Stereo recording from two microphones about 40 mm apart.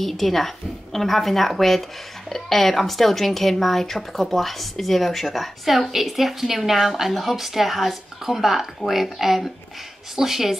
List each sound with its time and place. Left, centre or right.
0.0 s speech: centre